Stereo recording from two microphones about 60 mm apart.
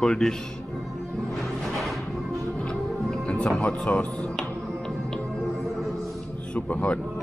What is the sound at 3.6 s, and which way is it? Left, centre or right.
Speech, centre.